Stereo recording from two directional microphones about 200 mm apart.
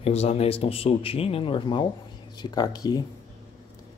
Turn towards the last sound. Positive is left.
turn(degrees=20)  # may be behind; listen again after turning